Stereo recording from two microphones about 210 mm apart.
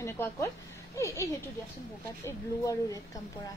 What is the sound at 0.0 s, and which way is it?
A woman's voice, 15° left (ahead or behind).